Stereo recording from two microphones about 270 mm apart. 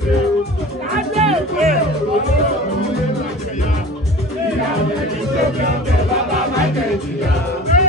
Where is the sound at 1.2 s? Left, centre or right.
Right.